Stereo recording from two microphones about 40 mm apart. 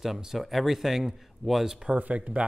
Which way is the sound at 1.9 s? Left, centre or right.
Right.